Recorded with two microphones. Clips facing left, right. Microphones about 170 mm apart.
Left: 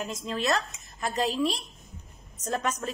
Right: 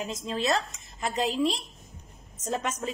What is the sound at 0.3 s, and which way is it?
A woman's voice, 25° right (ahead or behind).